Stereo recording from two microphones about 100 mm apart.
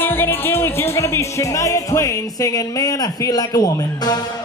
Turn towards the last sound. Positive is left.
turn(degrees=35)  # may be behind; listen again after turning